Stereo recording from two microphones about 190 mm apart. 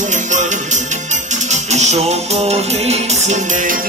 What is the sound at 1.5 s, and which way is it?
Music, 35° right (ahead or behind).